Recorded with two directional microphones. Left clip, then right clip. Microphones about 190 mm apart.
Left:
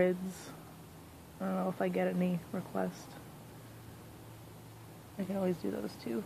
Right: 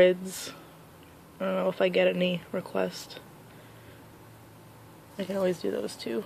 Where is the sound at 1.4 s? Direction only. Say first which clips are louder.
Right 9 dB; 15° right (ahead or behind).